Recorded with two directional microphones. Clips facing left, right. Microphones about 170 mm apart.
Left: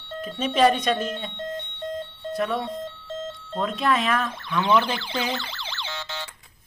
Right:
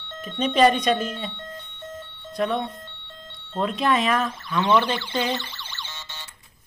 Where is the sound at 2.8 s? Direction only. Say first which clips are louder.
Left 12 dB; 90° left.